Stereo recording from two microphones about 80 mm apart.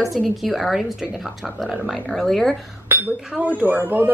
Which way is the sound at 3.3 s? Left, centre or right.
Centre.